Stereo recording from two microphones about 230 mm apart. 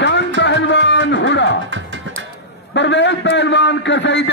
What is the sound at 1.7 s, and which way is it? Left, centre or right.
Music, right.